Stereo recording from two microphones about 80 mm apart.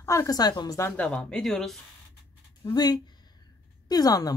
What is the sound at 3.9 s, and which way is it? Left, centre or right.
Speech, left.